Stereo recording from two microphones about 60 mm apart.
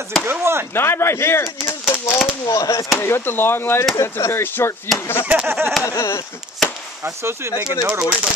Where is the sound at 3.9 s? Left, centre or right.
Left.